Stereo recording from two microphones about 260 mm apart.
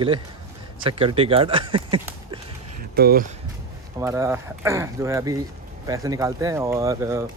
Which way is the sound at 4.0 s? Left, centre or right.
Centre.